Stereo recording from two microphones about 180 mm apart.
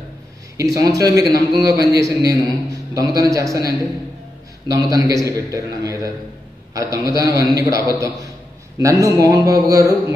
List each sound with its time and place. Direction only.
0.6 s a man's voice: 20° right (ahead or behind)